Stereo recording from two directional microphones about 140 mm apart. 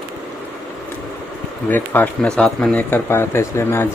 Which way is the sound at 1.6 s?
15° left (ahead or behind).